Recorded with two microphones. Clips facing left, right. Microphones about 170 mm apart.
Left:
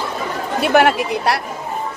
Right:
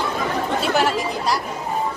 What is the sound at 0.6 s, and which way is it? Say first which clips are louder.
Chatter: left 8 dB; 65° left (ahead or behind).